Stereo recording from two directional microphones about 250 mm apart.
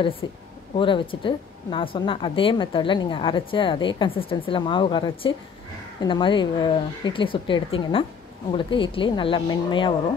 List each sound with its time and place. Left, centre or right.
0.2 s a woman's voice: centre